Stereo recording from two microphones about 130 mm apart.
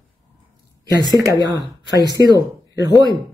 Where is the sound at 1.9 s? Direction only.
30° right (ahead or behind).